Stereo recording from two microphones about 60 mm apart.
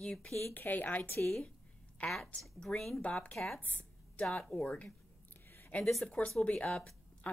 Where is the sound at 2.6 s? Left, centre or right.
Centre.